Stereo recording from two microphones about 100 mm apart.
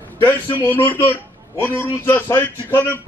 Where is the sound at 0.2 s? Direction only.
20° left (ahead or behind).